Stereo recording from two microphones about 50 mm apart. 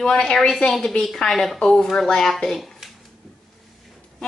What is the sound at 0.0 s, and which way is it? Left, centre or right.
A woman's voice, centre.